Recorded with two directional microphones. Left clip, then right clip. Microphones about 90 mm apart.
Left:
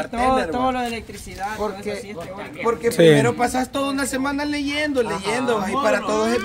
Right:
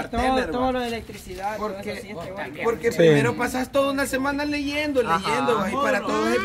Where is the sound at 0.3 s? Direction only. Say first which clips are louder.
Left 2 dB; 60° left (ahead or behind).